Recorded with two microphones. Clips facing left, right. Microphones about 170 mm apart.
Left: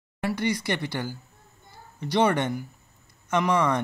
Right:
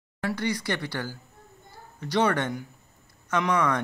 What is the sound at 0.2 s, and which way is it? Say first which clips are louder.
Speech: left 2 dB; 10° left (ahead or behind).